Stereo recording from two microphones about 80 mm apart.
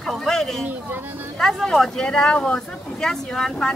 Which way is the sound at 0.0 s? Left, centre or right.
Centre.